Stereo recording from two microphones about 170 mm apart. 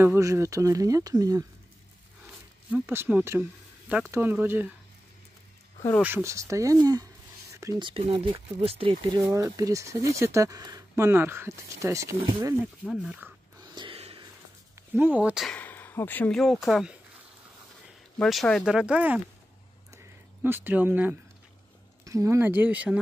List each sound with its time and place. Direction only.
0.0 s speech: 15° right (ahead or behind)
2.7 s speech: 10° right (ahead or behind)
6.0 s speech: 15° right (ahead or behind); by 9.2 s 35° right (ahead or behind)
9.2 s speech: 20° right (ahead or behind)
12.2 s speech: 30° right (ahead or behind)
12.8 s speech: 5° right (ahead or behind)
13.6 s a sound: 25° right (ahead or behind)
14.8 s speech: 10° right (ahead or behind)
15.5 s speech: 10° left (ahead or behind)
18.2 s speech: 5° left (ahead or behind)
20.4 s speech: 10° right (ahead or behind)